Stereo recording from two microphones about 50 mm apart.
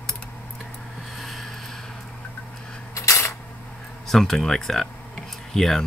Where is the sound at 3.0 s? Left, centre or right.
Left.